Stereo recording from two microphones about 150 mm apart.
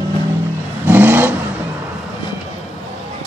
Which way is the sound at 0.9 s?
15° right (ahead or behind).